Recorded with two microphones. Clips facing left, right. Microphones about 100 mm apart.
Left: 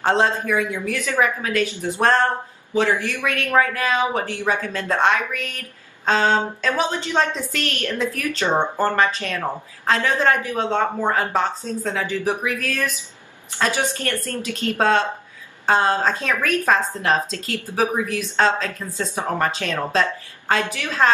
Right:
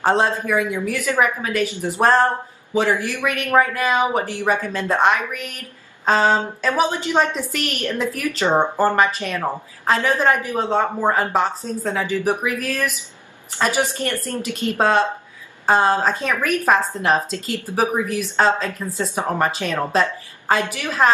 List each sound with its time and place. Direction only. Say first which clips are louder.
0.0 s a woman's voice: right 1 dB; 5° right (ahead or behind)